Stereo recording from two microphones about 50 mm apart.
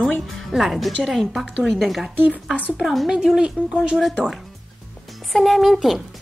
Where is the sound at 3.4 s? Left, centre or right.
Centre.